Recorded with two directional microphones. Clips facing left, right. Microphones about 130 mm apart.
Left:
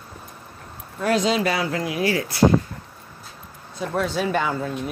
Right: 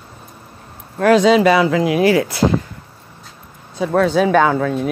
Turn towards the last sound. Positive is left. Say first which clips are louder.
# right 9 dB
turn(degrees=-90)